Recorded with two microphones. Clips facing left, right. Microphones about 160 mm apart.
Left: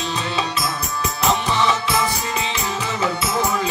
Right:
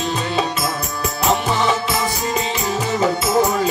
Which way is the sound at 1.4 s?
45° right (ahead or behind).